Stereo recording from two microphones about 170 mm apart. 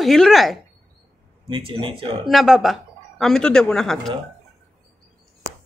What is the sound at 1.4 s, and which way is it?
Speech, 30° right (ahead or behind).